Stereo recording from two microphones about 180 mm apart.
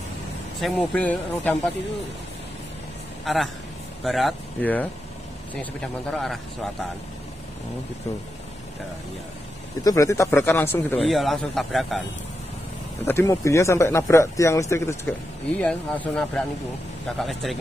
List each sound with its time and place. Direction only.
0.6 s speech: 5° left (ahead or behind)
3.3 s a man's voice: centre (ahead or behind)
9.8 s speech: 15° left (ahead or behind)
11.0 s a man's voice: centre (ahead or behind)
13.0 s a man's voice: 15° left (ahead or behind)